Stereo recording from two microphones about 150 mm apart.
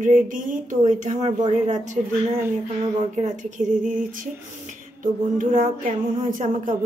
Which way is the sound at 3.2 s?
55° right (ahead or behind).